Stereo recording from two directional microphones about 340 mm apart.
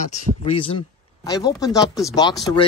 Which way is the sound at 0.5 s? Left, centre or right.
Centre.